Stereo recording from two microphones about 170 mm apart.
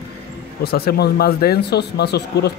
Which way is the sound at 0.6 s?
65° left (ahead or behind).